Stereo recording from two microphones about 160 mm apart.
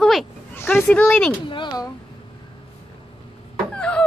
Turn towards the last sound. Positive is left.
turn(degrees=5)  # may be behind; listen again after turning